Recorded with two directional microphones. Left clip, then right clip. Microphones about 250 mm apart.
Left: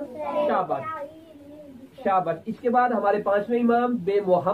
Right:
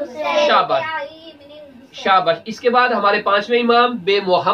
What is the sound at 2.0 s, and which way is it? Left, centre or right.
A man's voice, centre.